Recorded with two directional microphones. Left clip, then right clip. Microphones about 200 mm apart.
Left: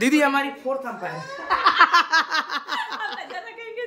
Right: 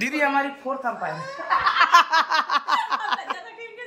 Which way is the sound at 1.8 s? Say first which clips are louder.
Right 2 dB; centre (ahead or behind).